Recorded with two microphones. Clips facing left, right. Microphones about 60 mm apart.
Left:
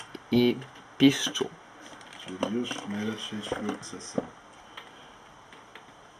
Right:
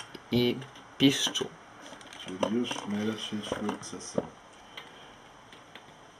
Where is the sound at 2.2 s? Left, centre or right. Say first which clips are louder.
Right 1 dB; centre.